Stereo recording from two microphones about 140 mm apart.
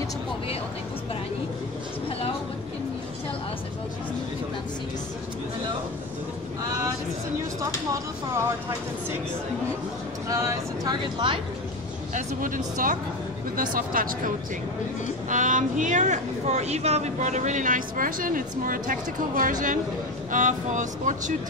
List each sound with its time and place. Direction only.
7.9 s speech: 20° right (ahead or behind)
10.2 s speech: 20° right (ahead or behind)
12.1 s speech: 70° right (ahead or behind)
13.6 s speech: 85° right
15.2 s a woman's voice: 65° right (ahead or behind)
20.2 s a woman's voice: 65° right (ahead or behind)